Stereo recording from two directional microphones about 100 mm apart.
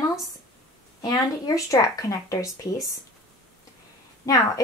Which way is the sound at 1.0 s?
40° left (ahead or behind).